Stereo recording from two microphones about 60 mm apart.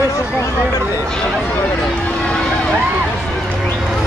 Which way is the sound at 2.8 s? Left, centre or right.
Centre.